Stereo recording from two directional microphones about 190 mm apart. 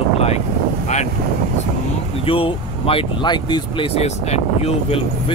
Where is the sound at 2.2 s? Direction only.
30° left (ahead or behind).